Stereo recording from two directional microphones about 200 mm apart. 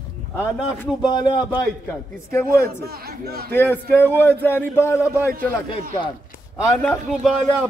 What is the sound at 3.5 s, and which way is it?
A man's voice, 10° left (ahead or behind).